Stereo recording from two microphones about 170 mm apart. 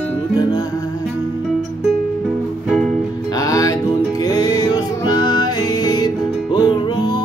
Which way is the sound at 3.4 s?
20° left (ahead or behind).